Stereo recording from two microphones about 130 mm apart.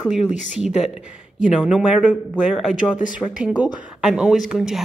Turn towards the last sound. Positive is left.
turn(degrees=-5)  # may be behind; listen again after turning